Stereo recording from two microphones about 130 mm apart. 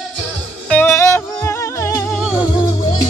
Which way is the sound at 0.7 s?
15° left (ahead or behind).